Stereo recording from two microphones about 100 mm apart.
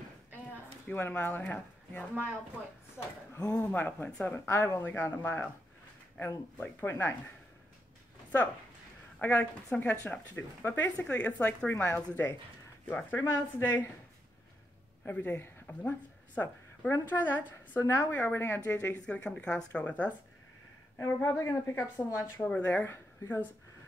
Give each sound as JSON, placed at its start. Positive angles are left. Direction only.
{"t": 0.8, "sound": "speech", "side_deg": 20}
{"t": 3.4, "sound": "a woman's voice", "side_deg": 15}
{"t": 9.2, "sound": "a woman's voice", "side_deg": 20}
{"t": 15.0, "sound": "a woman's voice", "side_deg": 20}
{"t": 21.0, "sound": "a woman's voice", "side_deg": 30}